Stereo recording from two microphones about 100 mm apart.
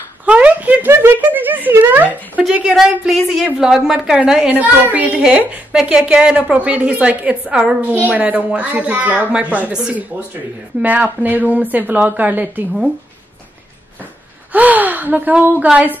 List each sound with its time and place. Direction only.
0.2 s speech: 15° right (ahead or behind)
2.4 s a woman's voice: 5° right (ahead or behind)
14.5 s a woman's voice: 15° right (ahead or behind)